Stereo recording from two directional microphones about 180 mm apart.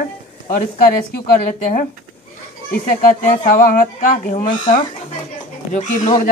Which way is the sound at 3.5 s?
45° left (ahead or behind).